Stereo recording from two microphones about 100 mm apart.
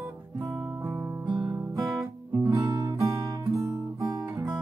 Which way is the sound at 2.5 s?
35° right (ahead or behind).